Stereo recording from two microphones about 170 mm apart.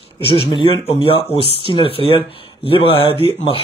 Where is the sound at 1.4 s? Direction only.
35° right (ahead or behind).